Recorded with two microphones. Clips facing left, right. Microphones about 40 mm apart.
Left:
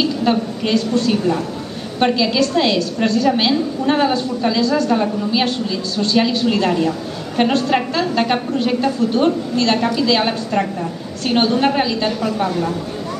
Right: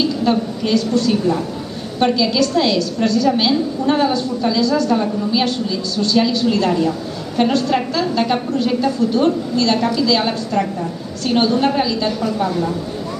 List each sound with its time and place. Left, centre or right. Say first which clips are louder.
0.0 s a woman's voice: even; left